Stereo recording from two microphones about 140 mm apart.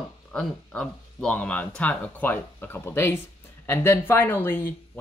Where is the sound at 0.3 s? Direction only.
5° left (ahead or behind).